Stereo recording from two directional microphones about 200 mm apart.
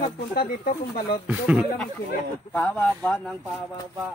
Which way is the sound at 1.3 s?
5° right (ahead or behind).